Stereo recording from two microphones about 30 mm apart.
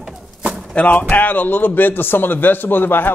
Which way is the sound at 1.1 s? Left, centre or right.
Left.